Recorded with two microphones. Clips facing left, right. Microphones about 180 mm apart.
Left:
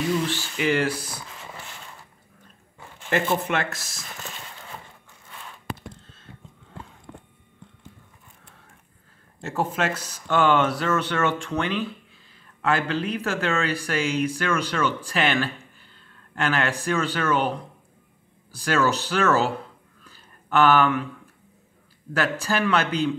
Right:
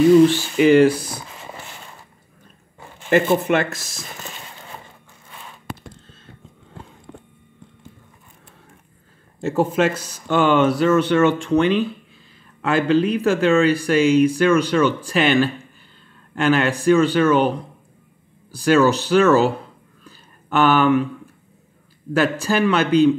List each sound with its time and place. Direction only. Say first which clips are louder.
0.3 s speech: right 10 dB; 20° right (ahead or behind)
3.1 s speech: right 7 dB; 15° right (ahead or behind)
9.4 s speech: right 8 dB; 20° right (ahead or behind)
18.6 s speech: right 7 dB; 20° right (ahead or behind)
20.1 s a sound: right 2 dB; 20° right (ahead or behind)
22.1 s speech: right 6 dB; 20° right (ahead or behind)